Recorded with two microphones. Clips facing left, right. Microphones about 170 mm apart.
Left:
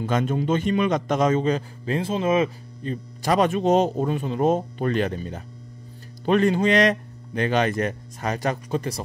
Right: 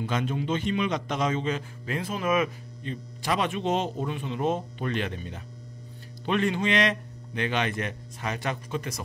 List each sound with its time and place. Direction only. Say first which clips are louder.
0.0 s a man's voice: left 5 dB; 45° left (ahead or behind); by 2.5 s 25° left (ahead or behind)
2.8 s speech: left 6 dB; 40° left (ahead or behind)